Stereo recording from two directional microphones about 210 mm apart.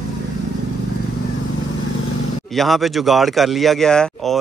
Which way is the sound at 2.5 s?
Centre (ahead or behind).